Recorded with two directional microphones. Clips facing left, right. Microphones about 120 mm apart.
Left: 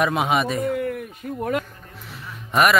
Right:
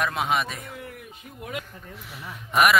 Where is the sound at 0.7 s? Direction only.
55° left (ahead or behind).